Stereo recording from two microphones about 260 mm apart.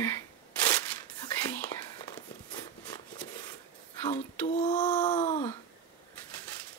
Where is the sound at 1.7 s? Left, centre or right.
Centre.